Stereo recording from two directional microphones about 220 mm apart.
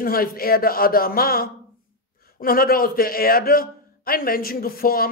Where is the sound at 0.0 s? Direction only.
40° left (ahead or behind).